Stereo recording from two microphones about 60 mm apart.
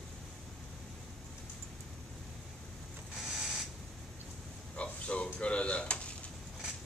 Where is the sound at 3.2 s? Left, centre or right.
Centre.